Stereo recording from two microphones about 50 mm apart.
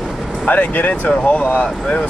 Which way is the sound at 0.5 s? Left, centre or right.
Left.